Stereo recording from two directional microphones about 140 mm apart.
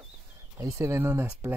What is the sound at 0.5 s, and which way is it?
Speech, 20° right (ahead or behind).